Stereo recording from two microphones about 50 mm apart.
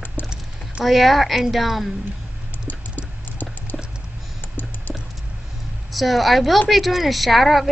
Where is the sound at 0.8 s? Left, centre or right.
Centre.